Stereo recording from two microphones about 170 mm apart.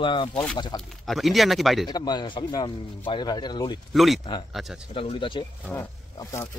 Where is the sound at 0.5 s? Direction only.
25° left (ahead or behind).